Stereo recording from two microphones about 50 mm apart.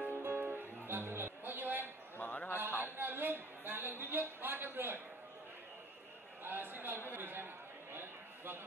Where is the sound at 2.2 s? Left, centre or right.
Left.